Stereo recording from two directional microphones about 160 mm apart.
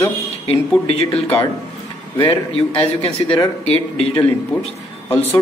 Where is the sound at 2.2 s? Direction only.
35° left (ahead or behind).